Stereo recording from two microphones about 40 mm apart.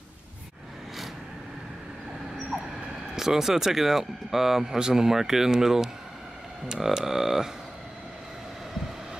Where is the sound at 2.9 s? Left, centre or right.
Centre.